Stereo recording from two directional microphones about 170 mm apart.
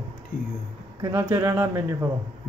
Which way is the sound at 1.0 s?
15° right (ahead or behind).